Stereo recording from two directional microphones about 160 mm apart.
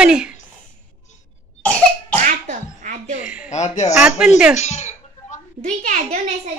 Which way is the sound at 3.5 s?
45° left (ahead or behind).